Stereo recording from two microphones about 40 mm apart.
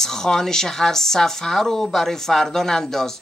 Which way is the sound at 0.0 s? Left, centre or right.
Centre.